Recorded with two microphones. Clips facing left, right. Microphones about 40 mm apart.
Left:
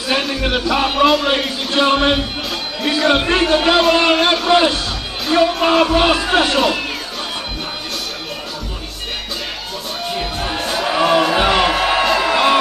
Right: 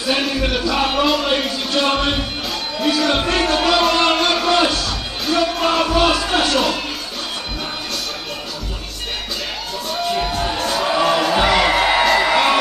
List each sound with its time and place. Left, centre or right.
0.5 s speech: left
0.7 s speech: centre
1.7 s speech: left
3.9 s a sound: centre
4.5 s music: left
5.5 s music: centre
10.1 s music: centre
11.4 s a sound: left
11.7 s music: centre